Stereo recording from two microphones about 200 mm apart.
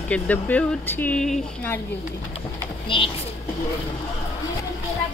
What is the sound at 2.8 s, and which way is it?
Speech, 25° left (ahead or behind).